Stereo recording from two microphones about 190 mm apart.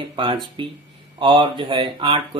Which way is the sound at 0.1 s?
25° right (ahead or behind).